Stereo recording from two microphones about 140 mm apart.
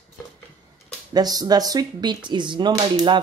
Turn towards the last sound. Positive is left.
turn(degrees=-30)  # may be behind; listen again after turning